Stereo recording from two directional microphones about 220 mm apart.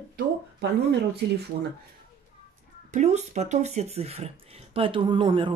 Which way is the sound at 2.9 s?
30° right (ahead or behind).